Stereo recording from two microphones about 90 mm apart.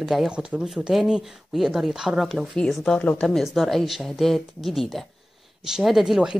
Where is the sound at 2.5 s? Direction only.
5° left (ahead or behind).